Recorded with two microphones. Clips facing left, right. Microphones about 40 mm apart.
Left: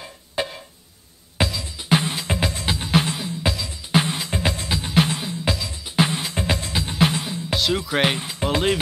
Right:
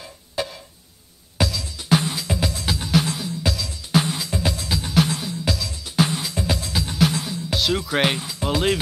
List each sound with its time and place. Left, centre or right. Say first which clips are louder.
0.0 s music: left 1 dB; left
7.5 s speech: even; centre
8.2 s speech: left 1 dB; left